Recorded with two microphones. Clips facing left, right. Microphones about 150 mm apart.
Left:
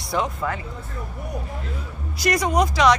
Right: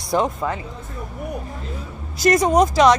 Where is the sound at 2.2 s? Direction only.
45° right (ahead or behind).